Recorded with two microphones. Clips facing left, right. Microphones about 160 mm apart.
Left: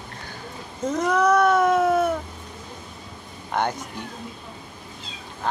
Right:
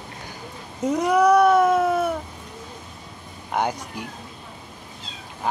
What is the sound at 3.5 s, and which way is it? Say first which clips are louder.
Speech: right 1 dB; 10° right (ahead or behind).